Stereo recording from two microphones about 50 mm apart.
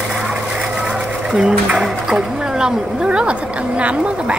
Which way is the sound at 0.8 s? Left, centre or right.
Centre.